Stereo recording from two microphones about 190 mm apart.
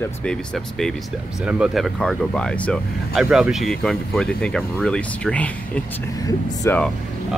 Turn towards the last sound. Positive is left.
turn(degrees=20)  # may be behind; listen again after turning